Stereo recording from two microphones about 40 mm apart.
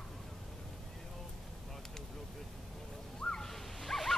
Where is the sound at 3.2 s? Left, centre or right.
Centre.